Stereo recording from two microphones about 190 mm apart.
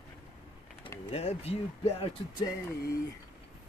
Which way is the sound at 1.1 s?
35° left (ahead or behind).